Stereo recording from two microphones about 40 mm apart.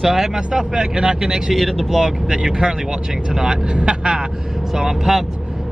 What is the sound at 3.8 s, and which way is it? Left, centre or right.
Speech, right.